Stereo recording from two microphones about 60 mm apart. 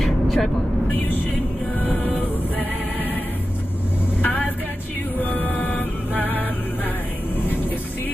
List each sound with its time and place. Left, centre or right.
0.0 s vehicle: centre
4.2 s vehicle: left
5.2 s music: left